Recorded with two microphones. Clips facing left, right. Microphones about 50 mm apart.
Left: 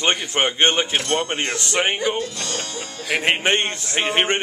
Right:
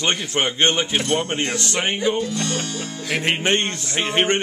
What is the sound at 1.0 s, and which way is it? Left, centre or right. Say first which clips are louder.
Speech: right 1 dB; centre.